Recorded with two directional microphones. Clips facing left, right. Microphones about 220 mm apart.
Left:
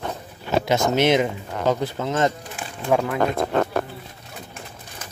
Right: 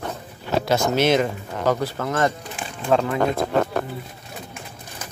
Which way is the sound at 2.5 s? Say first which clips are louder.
Right 1 dB; 5° left (ahead or behind).